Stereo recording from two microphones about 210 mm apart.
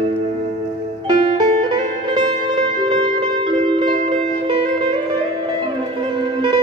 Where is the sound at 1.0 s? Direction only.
20° right (ahead or behind).